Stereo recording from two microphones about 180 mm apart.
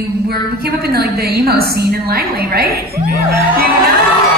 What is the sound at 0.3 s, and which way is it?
A woman's voice, 60° right (ahead or behind).